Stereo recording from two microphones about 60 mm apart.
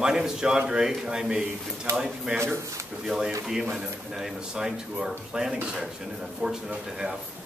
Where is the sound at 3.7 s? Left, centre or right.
Centre.